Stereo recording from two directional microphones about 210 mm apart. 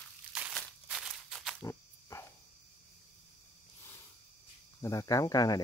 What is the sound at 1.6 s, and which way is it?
Wild animals, 15° left (ahead or behind).